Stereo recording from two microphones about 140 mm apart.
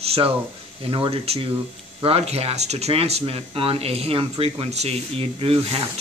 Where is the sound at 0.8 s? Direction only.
40° right (ahead or behind).